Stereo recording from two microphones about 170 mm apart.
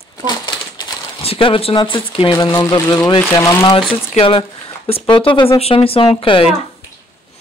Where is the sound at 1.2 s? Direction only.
35° left (ahead or behind).